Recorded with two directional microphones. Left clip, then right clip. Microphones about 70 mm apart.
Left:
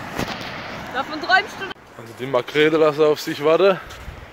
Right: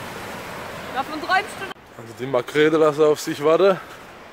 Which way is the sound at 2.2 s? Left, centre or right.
Right.